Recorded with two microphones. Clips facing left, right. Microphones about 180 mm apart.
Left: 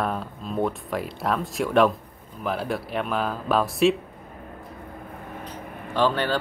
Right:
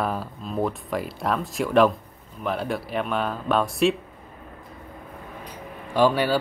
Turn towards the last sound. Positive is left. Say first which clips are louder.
# right 3 dB
turn(degrees=-10)  # may be behind; listen again after turning